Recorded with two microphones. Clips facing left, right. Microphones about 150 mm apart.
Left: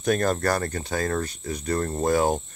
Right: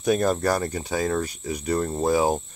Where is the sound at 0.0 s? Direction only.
5° right (ahead or behind).